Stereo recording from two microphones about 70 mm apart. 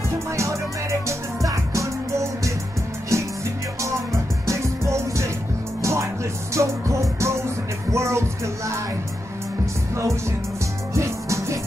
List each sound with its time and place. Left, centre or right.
0.4 s music: right
4.5 s music: right
11.0 s music: right